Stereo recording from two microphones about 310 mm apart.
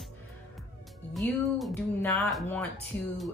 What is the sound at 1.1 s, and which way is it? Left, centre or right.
A woman's voice, centre.